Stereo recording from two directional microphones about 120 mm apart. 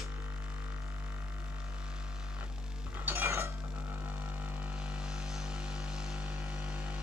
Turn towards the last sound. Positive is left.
turn(degrees=-5)  # may be behind; listen again after turning